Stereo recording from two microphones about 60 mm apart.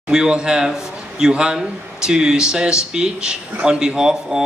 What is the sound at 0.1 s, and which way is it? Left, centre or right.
Speech, centre.